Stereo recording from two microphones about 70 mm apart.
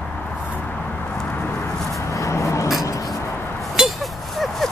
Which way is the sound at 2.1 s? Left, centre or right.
Left.